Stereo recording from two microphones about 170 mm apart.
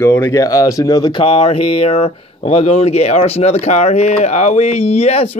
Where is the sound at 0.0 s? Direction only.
15° left (ahead or behind).